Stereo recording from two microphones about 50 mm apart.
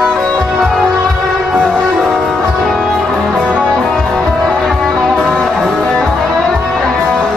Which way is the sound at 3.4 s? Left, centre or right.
Centre.